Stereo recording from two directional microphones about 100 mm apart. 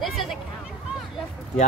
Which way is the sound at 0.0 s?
Centre (ahead or behind).